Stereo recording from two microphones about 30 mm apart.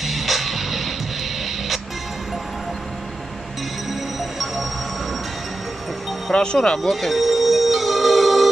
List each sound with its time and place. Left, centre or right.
0.0 s music: centre
4.2 s music: centre
6.3 s speech: left
6.8 s music: centre